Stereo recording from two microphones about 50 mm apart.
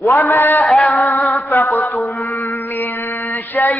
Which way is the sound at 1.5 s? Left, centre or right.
Left.